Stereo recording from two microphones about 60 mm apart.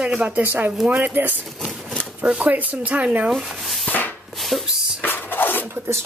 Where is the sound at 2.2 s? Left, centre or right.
Right.